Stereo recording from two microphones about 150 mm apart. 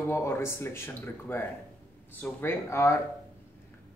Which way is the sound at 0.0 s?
15° left (ahead or behind).